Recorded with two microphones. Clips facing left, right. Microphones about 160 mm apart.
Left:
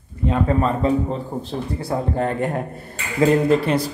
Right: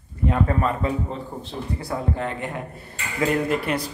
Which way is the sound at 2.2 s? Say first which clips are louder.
Left 7 dB; 45° left (ahead or behind).